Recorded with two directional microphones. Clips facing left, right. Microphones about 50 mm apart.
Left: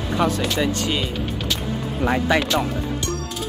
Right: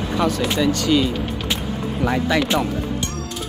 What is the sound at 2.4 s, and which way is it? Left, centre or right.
Speech, right.